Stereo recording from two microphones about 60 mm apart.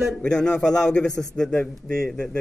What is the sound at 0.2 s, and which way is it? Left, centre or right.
A man's voice, centre.